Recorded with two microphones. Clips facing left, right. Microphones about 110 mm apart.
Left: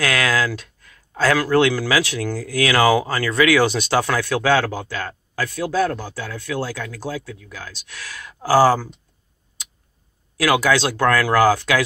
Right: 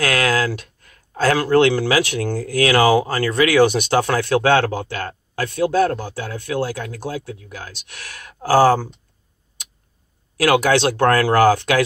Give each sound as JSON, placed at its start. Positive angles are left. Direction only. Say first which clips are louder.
{"t": 0.0, "sound": "speech", "louder": "right 1 dB", "side_deg": -45}
{"t": 0.6, "sound": "a sound", "louder": "right 3 dB", "side_deg": -50}
{"t": 1.9, "sound": "speech", "louder": "right 2 dB", "side_deg": -50}
{"t": 10.4, "sound": "speech", "louder": "right 2 dB", "side_deg": -55}